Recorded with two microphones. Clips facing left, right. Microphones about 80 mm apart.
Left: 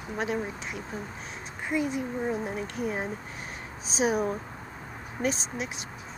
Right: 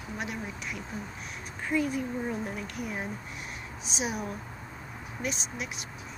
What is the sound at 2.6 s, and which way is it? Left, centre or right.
Speech, left.